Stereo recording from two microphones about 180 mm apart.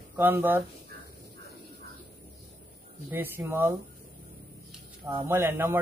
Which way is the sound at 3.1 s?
10° right (ahead or behind).